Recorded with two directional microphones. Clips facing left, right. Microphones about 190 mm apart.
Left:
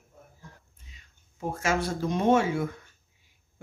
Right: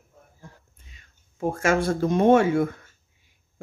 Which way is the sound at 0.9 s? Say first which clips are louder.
Right 1 dB; 55° right (ahead or behind).